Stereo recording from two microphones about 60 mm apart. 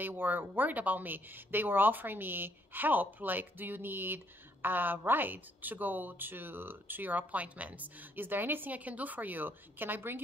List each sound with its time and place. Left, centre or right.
0.0 s speech: right